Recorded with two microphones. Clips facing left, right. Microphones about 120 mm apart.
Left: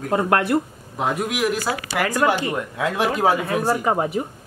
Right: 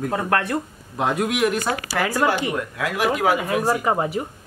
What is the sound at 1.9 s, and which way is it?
Speech, 15° left (ahead or behind).